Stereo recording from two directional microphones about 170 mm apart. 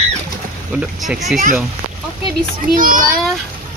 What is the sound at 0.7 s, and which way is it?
Speech, 5° right (ahead or behind).